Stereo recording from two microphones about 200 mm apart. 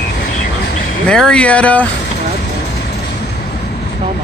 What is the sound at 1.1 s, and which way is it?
Speech, 5° left (ahead or behind).